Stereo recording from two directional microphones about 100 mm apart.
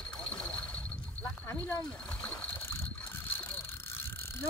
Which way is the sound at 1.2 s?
20° left (ahead or behind).